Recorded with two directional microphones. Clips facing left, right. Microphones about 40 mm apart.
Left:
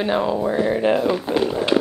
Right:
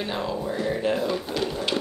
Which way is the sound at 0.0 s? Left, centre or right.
Left.